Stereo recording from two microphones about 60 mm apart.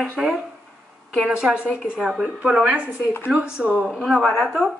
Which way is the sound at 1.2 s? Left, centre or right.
Centre.